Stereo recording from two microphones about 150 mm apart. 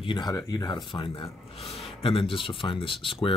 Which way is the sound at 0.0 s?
30° left (ahead or behind).